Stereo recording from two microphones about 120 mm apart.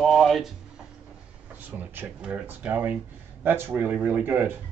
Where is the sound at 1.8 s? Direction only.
15° right (ahead or behind).